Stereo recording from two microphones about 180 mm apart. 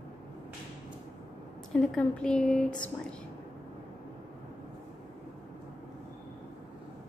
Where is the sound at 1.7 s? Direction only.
5° left (ahead or behind).